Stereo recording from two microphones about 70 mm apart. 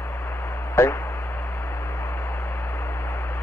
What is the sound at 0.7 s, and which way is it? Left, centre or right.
Speech, left.